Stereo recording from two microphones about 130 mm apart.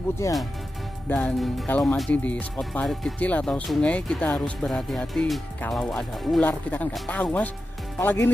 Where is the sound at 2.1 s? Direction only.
10° left (ahead or behind).